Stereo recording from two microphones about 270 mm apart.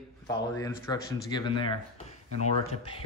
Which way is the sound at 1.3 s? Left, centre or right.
Centre.